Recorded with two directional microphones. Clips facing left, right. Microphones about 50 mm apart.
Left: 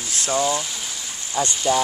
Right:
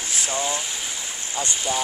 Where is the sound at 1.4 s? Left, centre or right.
Centre.